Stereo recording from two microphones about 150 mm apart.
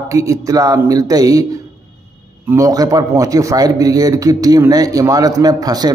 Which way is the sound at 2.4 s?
20° right (ahead or behind).